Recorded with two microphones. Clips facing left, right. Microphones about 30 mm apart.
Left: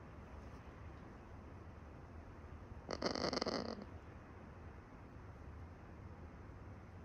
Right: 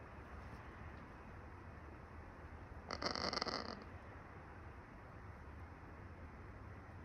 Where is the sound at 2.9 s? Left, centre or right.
Right.